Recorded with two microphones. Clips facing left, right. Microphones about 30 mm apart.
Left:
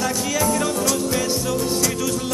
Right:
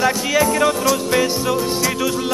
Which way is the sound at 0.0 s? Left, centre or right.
Right.